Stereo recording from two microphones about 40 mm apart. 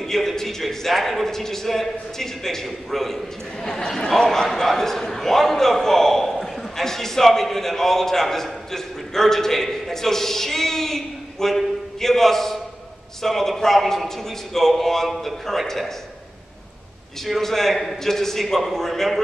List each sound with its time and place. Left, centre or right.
0.0 s a man's voice: centre
17.2 s a man's voice: centre